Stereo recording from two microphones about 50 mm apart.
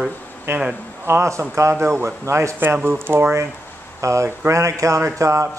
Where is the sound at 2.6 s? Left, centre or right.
Right.